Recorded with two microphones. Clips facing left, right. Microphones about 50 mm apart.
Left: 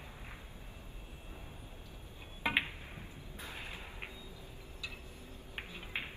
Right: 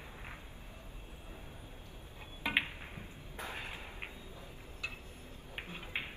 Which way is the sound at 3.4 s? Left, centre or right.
Right.